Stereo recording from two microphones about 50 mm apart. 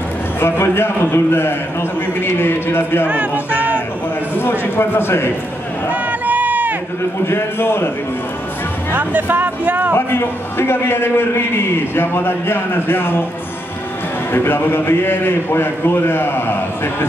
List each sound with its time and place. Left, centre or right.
0.4 s a man's voice: left
3.1 s speech: right
4.4 s a man's voice: left
5.9 s crowd: right
7.2 s a man's voice: left
8.9 s speech: right
9.9 s a man's voice: left
14.3 s a man's voice: left